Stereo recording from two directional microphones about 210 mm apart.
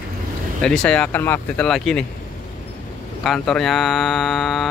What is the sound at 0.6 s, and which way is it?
Speech, 5° left (ahead or behind).